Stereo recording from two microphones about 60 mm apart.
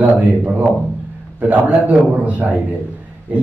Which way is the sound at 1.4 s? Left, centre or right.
Right.